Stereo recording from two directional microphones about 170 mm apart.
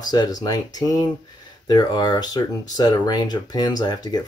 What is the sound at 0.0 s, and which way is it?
Speech, 25° left (ahead or behind).